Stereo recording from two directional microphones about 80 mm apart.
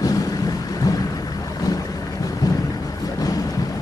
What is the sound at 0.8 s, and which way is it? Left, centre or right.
Thunder, left.